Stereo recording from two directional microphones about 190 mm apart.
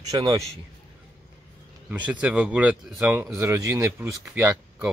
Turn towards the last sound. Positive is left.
turn(degrees=-15)  # may be behind; listen again after turning